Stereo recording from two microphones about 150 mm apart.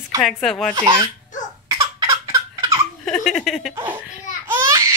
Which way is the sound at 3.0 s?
Centre (ahead or behind).